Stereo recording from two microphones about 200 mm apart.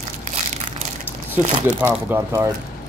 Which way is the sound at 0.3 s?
35° right (ahead or behind).